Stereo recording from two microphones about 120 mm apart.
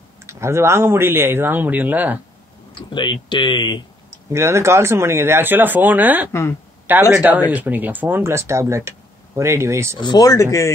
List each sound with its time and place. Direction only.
0.3 s speech: 20° right (ahead or behind)
2.7 s speech: 40° left (ahead or behind)
4.3 s speech: 20° right (ahead or behind)
9.9 s speech: 35° left (ahead or behind)